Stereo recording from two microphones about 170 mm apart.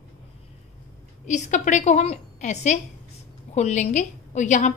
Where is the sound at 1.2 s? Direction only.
45° left (ahead or behind).